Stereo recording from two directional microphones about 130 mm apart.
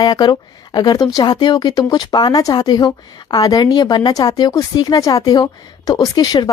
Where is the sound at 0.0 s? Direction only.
30° left (ahead or behind).